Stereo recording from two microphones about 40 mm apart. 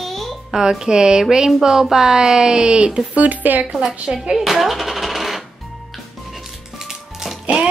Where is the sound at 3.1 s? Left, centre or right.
Right.